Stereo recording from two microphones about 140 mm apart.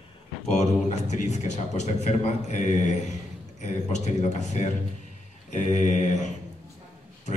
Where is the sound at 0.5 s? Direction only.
55° left (ahead or behind).